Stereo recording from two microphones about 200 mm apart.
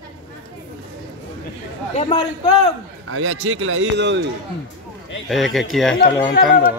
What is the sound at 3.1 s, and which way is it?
A man's voice, 85° right.